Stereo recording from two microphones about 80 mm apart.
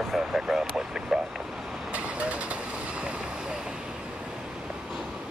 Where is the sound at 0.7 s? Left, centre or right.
Centre.